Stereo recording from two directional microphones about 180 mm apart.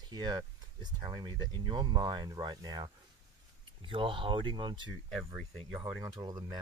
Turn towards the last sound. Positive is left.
turn(degrees=-20)  # may be behind; listen again after turning